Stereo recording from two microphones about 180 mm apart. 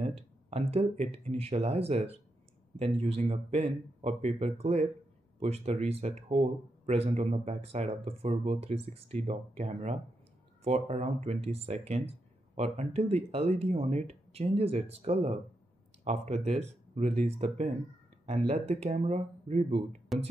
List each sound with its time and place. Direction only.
0.0 s speech: 35° right (ahead or behind)
20.1 s speech: centre (ahead or behind)